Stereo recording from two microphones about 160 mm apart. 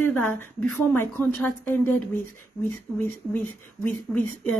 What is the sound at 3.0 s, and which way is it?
A woman's voice, 10° left (ahead or behind).